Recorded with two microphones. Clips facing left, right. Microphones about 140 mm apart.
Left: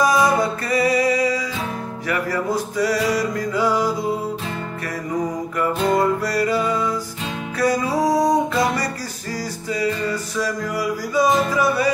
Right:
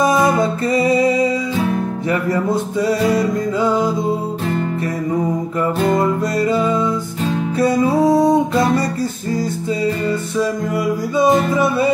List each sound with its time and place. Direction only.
0.0 s music: 25° right (ahead or behind)
5.9 s music: 25° right (ahead or behind)
10.0 s music: 25° right (ahead or behind)